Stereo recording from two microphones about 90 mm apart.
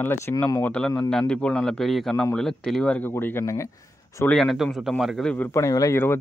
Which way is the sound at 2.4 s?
5° left (ahead or behind).